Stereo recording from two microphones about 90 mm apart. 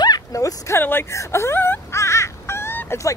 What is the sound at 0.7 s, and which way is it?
Fowl, 25° left (ahead or behind).